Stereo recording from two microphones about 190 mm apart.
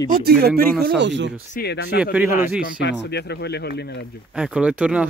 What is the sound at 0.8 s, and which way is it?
Speech, 65° right (ahead or behind).